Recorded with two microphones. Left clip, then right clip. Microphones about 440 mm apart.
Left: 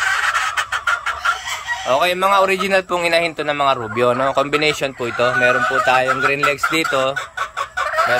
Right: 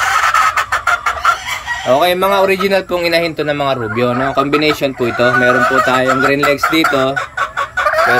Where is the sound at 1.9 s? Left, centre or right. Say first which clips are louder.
Right 4 dB; centre.